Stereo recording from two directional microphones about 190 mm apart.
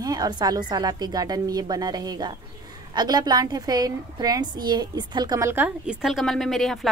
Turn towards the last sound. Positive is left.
turn(degrees=0)  # may be behind; listen again after turning